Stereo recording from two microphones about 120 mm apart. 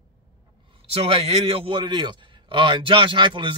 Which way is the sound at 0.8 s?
55° right (ahead or behind).